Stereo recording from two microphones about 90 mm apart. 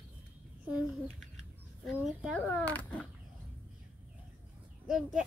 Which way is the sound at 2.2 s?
15° right (ahead or behind).